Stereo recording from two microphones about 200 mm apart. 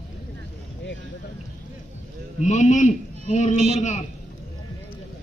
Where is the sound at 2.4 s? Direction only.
35° left (ahead or behind).